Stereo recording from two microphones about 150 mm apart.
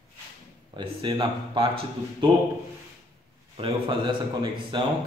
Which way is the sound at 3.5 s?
35° right (ahead or behind).